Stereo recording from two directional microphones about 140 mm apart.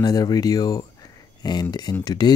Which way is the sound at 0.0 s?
25° left (ahead or behind).